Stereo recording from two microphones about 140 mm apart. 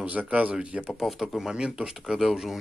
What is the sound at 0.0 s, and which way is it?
A man's voice, 10° right (ahead or behind).